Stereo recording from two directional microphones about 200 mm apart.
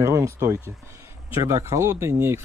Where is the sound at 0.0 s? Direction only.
15° right (ahead or behind).